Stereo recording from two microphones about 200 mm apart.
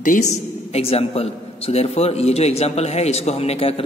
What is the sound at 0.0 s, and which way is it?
A man's voice, 40° left (ahead or behind).